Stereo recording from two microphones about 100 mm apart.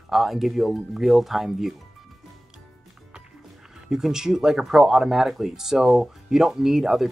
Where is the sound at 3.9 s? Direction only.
5° right (ahead or behind).